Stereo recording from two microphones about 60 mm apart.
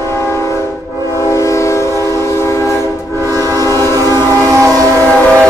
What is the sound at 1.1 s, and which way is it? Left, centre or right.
Train, left.